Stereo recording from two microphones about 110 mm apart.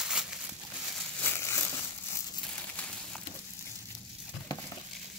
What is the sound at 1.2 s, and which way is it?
Crumpling, 20° left (ahead or behind).